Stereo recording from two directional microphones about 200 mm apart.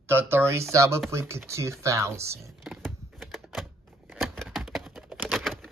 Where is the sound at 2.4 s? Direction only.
Centre (ahead or behind).